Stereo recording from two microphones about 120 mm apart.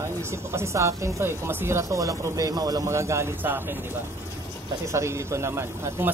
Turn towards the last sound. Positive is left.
turn(degrees=-20)  # may be behind; listen again after turning